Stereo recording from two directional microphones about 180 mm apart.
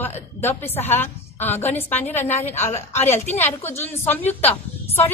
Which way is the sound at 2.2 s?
40° left (ahead or behind).